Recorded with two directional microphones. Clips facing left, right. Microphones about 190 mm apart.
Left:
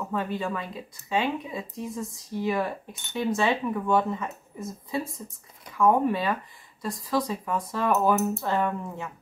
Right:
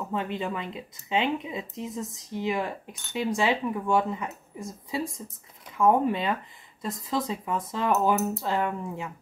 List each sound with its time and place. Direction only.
0.1 s speech: 20° right (ahead or behind)